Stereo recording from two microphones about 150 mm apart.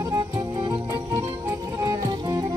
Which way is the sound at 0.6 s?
20° right (ahead or behind).